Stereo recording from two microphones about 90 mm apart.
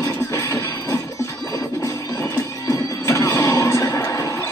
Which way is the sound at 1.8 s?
35° left (ahead or behind).